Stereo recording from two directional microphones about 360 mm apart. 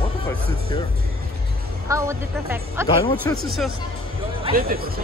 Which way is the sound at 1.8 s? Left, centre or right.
Centre.